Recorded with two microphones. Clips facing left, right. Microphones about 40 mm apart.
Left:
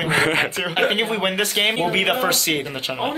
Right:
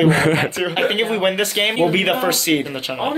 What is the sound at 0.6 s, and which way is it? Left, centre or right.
Speech, centre.